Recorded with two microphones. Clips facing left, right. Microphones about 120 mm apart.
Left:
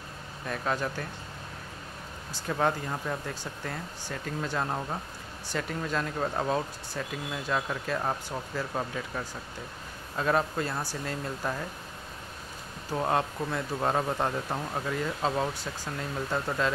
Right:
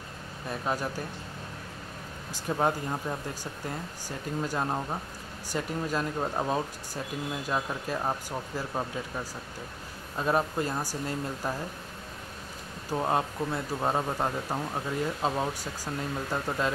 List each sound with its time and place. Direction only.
0.5 s speech: 10° right (ahead or behind)
2.3 s speech: 15° right (ahead or behind)
12.9 s speech: 10° right (ahead or behind)